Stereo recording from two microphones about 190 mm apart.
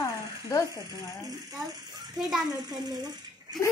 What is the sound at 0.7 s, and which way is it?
Speech, 20° right (ahead or behind).